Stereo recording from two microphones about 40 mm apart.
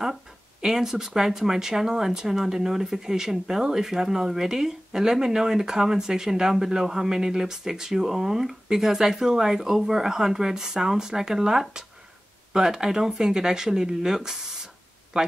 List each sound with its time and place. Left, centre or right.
0.6 s speech: centre
15.1 s speech: right